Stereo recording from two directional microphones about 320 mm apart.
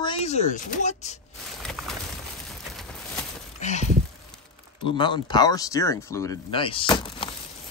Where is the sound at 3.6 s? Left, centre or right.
Left.